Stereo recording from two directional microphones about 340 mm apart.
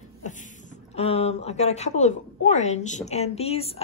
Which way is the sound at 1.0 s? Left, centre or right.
Centre.